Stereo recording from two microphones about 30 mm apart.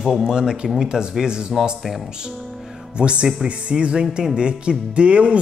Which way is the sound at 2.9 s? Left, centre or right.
Right.